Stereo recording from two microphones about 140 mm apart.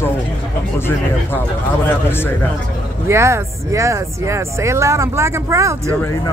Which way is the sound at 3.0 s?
20° right (ahead or behind).